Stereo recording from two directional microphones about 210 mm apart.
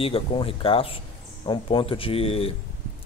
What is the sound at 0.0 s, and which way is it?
A man's voice, 25° left (ahead or behind).